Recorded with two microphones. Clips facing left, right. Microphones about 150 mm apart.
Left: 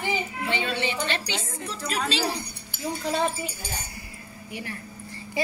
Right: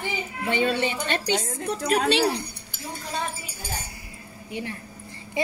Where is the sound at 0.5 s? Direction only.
45° right (ahead or behind); by 2.4 s 65° right (ahead or behind).